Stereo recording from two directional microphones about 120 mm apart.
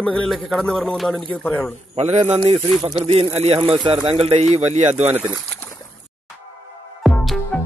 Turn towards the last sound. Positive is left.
turn(degrees=5)  # may be behind; listen again after turning